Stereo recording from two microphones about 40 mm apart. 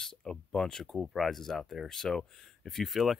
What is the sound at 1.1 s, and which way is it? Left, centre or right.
Speech, centre.